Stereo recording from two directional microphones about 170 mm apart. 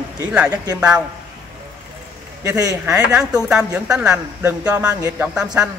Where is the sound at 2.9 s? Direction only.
5° right (ahead or behind).